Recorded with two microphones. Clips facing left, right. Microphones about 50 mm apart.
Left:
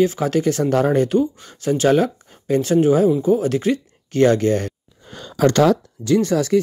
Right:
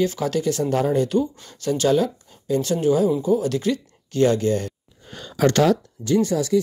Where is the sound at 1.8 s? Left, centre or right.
Left.